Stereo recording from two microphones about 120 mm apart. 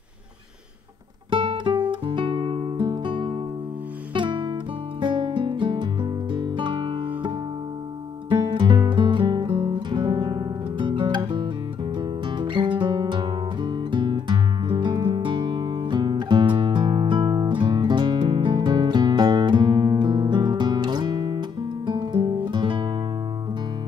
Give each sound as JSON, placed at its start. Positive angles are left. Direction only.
{"t": 1.3, "sound": "music", "side_deg": -45}
{"t": 1.9, "sound": "guitar", "side_deg": -45}
{"t": 2.9, "sound": "music", "side_deg": -40}
{"t": 4.1, "sound": "guitar", "side_deg": -40}
{"t": 5.0, "sound": "music", "side_deg": -40}